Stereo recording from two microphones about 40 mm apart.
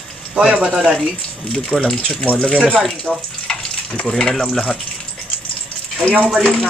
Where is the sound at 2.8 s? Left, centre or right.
Centre.